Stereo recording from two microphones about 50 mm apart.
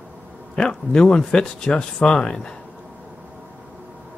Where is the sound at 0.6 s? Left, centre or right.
Centre.